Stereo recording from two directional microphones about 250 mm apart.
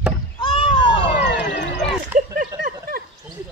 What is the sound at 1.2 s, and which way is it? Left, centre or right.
Music, left.